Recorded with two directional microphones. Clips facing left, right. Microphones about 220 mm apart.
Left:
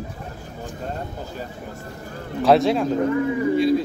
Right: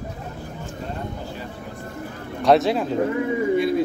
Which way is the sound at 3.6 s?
55° right (ahead or behind).